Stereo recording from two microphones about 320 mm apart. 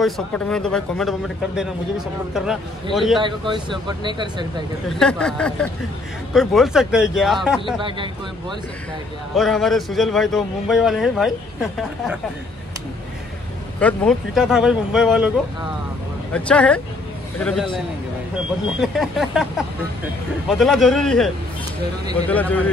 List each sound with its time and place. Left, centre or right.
0.0 s speech: centre
3.2 s speech: centre
4.8 s speech: centre
9.3 s speech: centre
13.7 s speech: centre
16.3 s speech: centre
18.8 s speech: centre
22.3 s speech: centre